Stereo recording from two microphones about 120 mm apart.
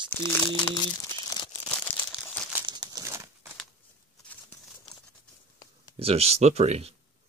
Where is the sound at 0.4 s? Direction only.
40° left (ahead or behind).